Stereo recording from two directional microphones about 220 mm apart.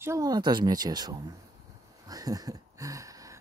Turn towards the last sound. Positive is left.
turn(degrees=-15)  # may be behind; listen again after turning